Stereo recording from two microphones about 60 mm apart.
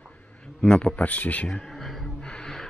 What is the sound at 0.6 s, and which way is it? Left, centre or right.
Speech, centre.